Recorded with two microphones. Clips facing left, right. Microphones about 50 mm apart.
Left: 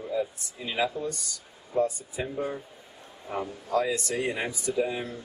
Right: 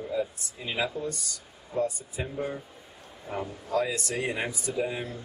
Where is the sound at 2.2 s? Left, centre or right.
Centre.